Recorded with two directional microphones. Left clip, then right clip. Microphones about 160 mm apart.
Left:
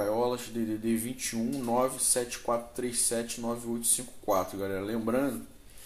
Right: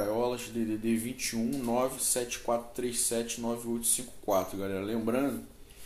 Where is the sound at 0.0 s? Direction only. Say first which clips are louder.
Left 2 dB; centre (ahead or behind).